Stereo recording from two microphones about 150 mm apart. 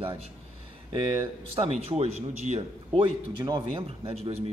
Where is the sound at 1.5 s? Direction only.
40° right (ahead or behind).